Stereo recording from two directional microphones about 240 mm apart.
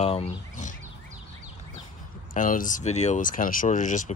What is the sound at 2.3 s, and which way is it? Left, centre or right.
Speech, left.